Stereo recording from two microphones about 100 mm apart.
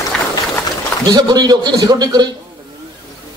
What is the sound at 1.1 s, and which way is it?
A man's voice, 40° right (ahead or behind).